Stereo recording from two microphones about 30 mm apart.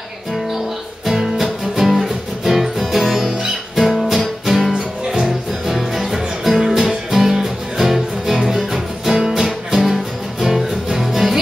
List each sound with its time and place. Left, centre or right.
1.0 s music: centre
4.7 s music: centre
5.7 s music: centre